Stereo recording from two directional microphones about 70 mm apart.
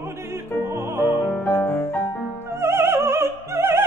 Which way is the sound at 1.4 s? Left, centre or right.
Left.